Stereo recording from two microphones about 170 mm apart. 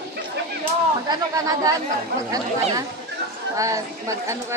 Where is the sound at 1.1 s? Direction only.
20° right (ahead or behind).